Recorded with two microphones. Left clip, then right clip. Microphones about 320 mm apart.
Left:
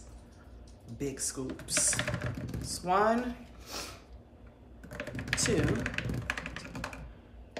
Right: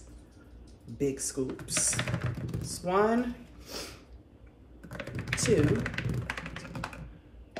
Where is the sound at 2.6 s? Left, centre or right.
Centre.